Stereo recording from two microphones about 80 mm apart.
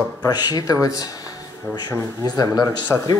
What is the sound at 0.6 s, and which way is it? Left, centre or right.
Speech, left.